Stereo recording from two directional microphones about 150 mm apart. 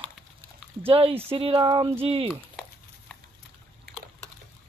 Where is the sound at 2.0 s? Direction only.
40° right (ahead or behind).